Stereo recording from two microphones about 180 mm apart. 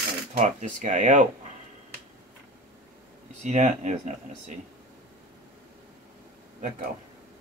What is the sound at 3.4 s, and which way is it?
Speech, 40° right (ahead or behind).